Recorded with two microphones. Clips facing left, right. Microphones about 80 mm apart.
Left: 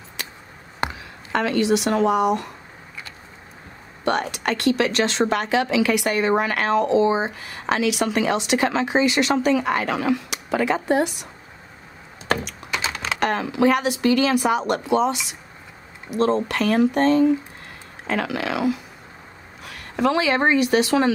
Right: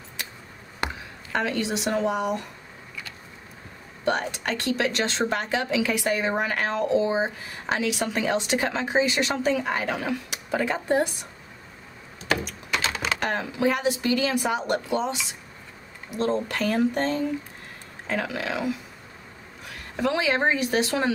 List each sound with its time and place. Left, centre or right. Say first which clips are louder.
1.3 s speech: left 6 dB; left
4.0 s speech: left 3 dB; left
13.2 s speech: left 7 dB; left
16.2 s speech: left 5 dB; left
20.0 s speech: left 4 dB; left